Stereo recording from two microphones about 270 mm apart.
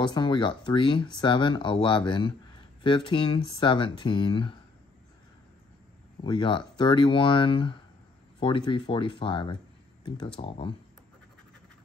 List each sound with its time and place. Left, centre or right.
0.0 s speech: centre
6.2 s speech: centre